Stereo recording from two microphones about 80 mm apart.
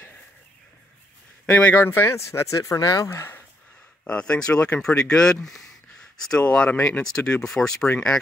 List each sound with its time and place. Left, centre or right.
1.4 s speech: left
1.9 s speech: left
3.1 s speech: left
4.0 s speech: centre